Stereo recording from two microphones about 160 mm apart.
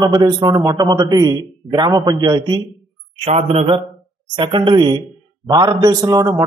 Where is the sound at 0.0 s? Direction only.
25° right (ahead or behind).